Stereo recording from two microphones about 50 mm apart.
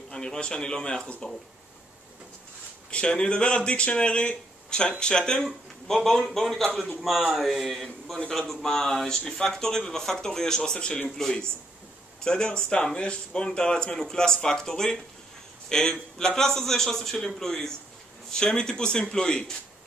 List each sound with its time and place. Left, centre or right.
0.1 s speech: centre
2.9 s speech: centre
5.4 s speech: centre
11.1 s speech: centre